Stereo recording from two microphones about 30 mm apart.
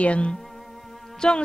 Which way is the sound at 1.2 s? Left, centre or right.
Centre.